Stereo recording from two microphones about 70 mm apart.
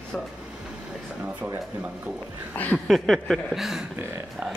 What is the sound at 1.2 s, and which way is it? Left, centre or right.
Speech, right.